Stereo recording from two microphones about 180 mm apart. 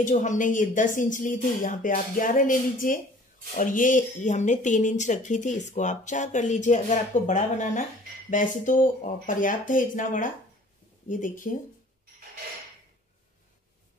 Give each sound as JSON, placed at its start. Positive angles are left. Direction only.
{"t": 0.0, "sound": "speech", "side_deg": 45}